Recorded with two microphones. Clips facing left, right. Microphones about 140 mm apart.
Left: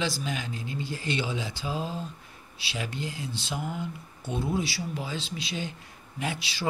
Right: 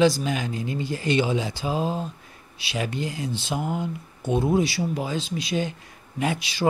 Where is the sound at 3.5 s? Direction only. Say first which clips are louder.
Right 6 dB; 50° right (ahead or behind).